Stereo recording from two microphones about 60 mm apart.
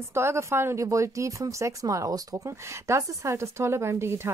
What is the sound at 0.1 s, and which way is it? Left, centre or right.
Speech, right.